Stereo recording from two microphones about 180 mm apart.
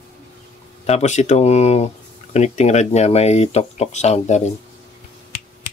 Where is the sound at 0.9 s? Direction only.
40° left (ahead or behind).